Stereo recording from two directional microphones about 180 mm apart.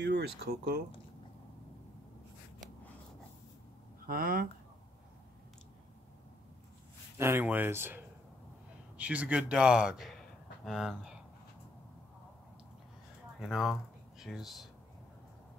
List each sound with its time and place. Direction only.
0.0 s speech: 65° right (ahead or behind)
4.0 s speech: 55° right (ahead or behind)
7.2 s a man's voice: 10° right (ahead or behind)
13.4 s a man's voice: centre (ahead or behind)